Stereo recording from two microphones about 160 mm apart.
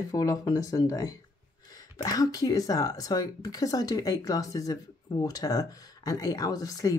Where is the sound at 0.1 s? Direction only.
20° left (ahead or behind).